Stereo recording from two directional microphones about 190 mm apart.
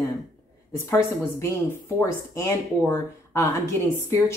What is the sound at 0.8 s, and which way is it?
A woman's voice, 15° left (ahead or behind).